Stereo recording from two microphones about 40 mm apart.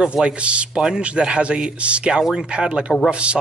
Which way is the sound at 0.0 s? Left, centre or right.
Right.